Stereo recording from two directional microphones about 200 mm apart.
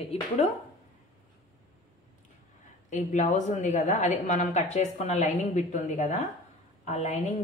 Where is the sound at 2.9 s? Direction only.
35° left (ahead or behind).